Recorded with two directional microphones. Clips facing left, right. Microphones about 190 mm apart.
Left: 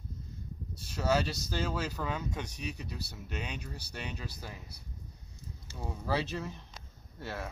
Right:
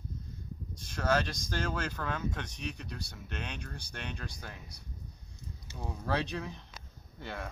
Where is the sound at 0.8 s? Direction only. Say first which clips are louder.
Left 1 dB; 5° left (ahead or behind).